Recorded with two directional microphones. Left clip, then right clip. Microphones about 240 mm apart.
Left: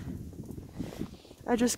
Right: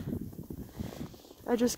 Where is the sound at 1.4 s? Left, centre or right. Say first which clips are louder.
Left 1 dB; centre.